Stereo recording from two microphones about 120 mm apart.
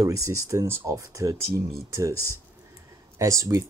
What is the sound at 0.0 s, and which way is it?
Speech, 25° right (ahead or behind).